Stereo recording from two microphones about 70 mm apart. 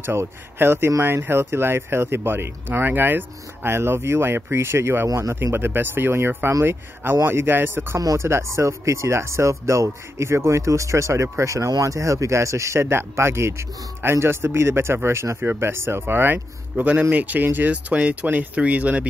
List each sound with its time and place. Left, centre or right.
0.0 s speech: right